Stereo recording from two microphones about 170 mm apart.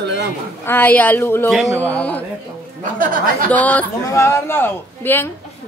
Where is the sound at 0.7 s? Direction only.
10° left (ahead or behind).